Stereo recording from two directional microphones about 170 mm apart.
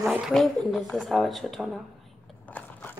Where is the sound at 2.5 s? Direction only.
10° left (ahead or behind).